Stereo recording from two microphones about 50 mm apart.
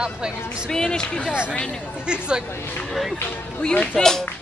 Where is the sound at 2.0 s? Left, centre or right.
Centre.